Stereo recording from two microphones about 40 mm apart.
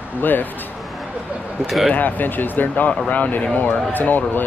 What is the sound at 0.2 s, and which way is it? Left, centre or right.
Speech, left.